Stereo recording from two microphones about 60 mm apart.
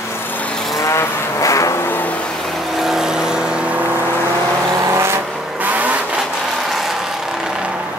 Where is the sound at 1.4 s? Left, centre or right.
Left.